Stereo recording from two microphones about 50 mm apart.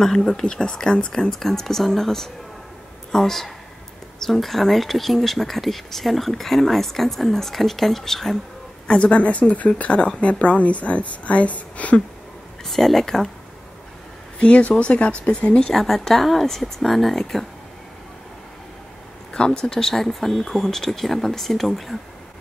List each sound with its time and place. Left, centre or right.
0.0 s speech: centre
1.3 s speech: centre
8.8 s a woman's voice: left
12.6 s speech: centre
14.4 s a woman's voice: left
15.7 s speech: centre
19.3 s speech: centre